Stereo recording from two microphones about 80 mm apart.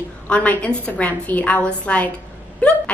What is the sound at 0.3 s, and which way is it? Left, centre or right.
A woman's voice, centre.